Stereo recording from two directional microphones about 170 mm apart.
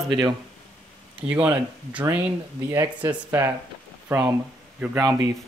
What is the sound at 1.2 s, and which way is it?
Speech, 5° right (ahead or behind).